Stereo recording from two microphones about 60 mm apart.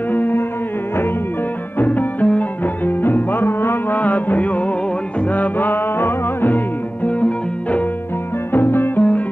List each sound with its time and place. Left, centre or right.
0.1 s music: left
1.8 s music: left
7.1 s music: left
8.5 s music: left